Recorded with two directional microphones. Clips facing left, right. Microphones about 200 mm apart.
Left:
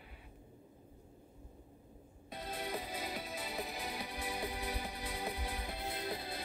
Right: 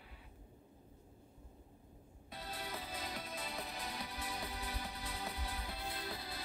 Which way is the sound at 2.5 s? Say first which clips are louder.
Left 5 dB; 20° left (ahead or behind).